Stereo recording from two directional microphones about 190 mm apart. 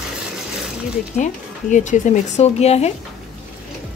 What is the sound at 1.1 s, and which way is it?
Speech, 40° left (ahead or behind).